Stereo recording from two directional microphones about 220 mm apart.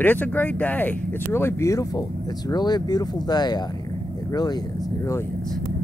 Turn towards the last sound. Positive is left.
turn(degrees=20)  # may be behind; listen again after turning